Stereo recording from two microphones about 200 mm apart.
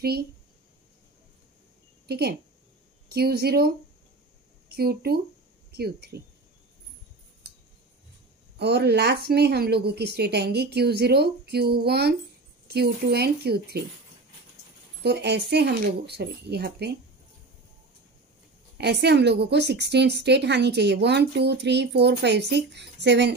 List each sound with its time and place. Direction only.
0.0 s a woman's voice: 50° right (ahead or behind)
2.0 s a woman's voice: 55° right (ahead or behind)
8.5 s a woman's voice: 55° right (ahead or behind)
15.0 s a woman's voice: 55° right (ahead or behind)
18.8 s a woman's voice: 55° right (ahead or behind)